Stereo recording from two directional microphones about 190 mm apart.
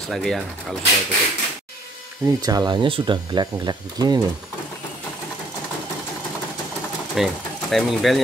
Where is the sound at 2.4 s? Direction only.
20° right (ahead or behind).